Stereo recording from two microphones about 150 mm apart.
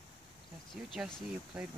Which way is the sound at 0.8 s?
5° right (ahead or behind).